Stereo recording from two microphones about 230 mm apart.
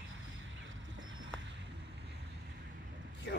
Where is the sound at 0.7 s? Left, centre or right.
Right.